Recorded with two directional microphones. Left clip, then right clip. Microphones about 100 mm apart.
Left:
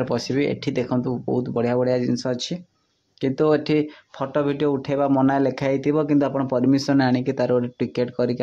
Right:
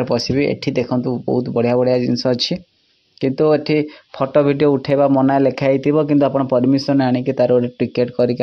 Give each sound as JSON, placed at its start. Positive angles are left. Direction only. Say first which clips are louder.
{"t": 0.0, "sound": "speech", "louder": "right 5 dB", "side_deg": -30}
{"t": 2.2, "sound": "speech", "louder": "right 8 dB", "side_deg": -65}
{"t": 3.2, "sound": "speech", "louder": "right 5 dB", "side_deg": -30}
{"t": 4.2, "sound": "speech", "louder": "right 8 dB", "side_deg": -50}
{"t": 5.1, "sound": "speech", "louder": "right 5 dB", "side_deg": -35}